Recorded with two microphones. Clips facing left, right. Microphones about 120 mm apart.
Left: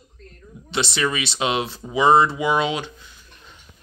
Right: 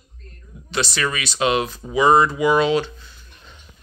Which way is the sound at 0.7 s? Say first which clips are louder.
Even; 25° left (ahead or behind).